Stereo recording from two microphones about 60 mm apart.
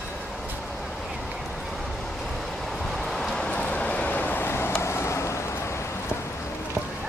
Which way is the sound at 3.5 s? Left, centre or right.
Left.